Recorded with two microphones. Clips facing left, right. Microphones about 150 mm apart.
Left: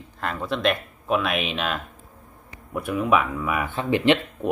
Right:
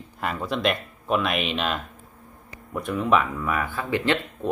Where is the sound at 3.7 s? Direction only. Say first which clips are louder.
Left 7 dB; 20° left (ahead or behind).